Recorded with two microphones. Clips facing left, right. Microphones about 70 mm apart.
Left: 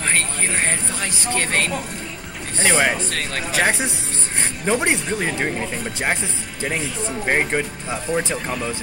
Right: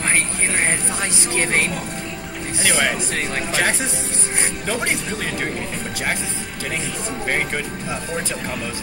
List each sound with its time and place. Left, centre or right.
0.5 s speech: centre
1.2 s speech: right
2.6 s speech: centre
3.1 s speech: centre
3.5 s speech: centre
7.2 s speech: centre